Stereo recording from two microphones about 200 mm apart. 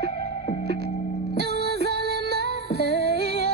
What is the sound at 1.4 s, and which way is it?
Music, 55° right (ahead or behind).